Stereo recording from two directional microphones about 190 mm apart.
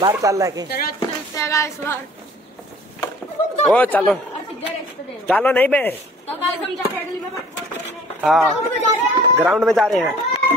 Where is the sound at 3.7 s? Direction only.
10° left (ahead or behind).